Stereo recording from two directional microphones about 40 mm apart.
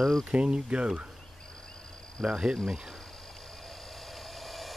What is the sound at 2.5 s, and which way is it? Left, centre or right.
Speech, centre.